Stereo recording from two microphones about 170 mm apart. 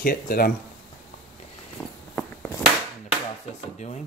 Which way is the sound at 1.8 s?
15° left (ahead or behind).